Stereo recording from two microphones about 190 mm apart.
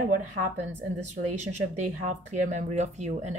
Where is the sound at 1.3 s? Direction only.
40° right (ahead or behind).